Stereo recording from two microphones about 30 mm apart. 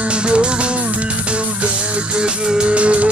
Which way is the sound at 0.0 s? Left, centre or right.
Right.